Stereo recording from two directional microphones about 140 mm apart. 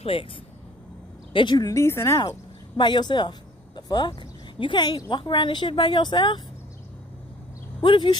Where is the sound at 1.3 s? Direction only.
35° left (ahead or behind).